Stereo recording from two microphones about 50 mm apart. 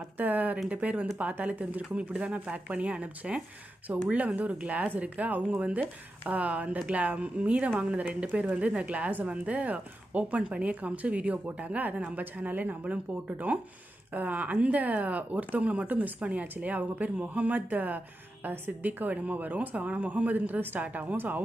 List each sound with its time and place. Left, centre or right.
0.2 s a woman's voice: right